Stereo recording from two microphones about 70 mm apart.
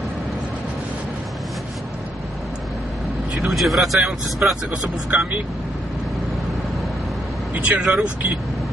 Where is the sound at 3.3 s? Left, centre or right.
Centre.